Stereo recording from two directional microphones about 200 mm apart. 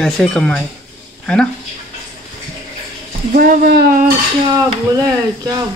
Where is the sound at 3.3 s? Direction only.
45° right (ahead or behind).